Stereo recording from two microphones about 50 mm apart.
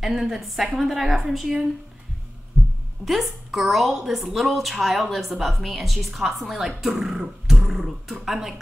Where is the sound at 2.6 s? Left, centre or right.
Centre.